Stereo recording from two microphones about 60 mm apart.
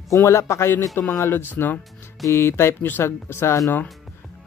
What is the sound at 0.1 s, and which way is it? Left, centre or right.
Speech, left.